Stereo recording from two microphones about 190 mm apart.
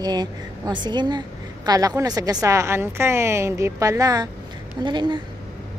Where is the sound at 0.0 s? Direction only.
20° right (ahead or behind).